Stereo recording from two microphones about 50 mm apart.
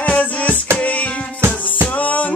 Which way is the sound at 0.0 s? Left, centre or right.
Left.